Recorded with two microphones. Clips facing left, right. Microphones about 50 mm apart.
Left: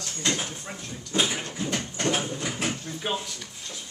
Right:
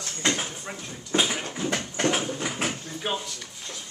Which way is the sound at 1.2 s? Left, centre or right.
Centre.